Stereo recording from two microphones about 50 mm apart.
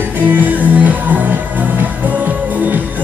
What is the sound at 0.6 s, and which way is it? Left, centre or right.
Music, right.